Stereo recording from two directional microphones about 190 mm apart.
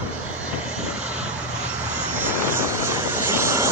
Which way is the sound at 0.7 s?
5° right (ahead or behind).